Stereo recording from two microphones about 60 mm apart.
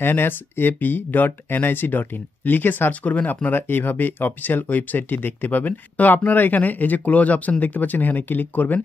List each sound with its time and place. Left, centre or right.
0.0 s speech: left